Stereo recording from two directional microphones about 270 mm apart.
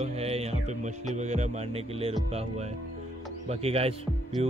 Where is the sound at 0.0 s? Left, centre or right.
Right.